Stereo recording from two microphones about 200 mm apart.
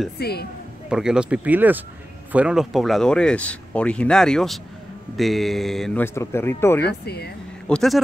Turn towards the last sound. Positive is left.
turn(degrees=5)  # may be behind; listen again after turning